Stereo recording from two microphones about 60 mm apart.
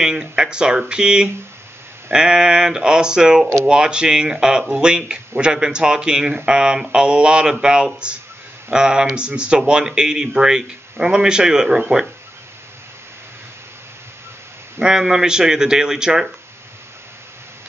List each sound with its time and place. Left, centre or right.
0.0 s speech: centre
14.8 s speech: centre